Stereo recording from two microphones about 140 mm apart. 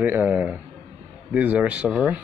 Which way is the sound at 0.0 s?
15° right (ahead or behind).